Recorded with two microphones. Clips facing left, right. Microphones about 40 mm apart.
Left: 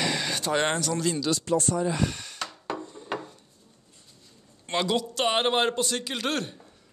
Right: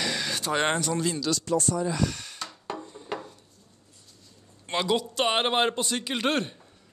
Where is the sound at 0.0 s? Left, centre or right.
Centre.